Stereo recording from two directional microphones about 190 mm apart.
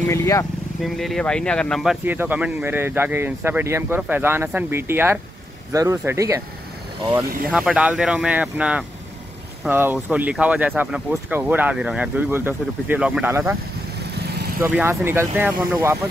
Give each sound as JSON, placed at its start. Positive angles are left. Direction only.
{"t": 0.1, "sound": "speech", "side_deg": 15}
{"t": 0.8, "sound": "speech", "side_deg": 0}
{"t": 7.5, "sound": "speech", "side_deg": -5}
{"t": 14.1, "sound": "vehicle", "side_deg": -60}
{"t": 14.6, "sound": "speech", "side_deg": -10}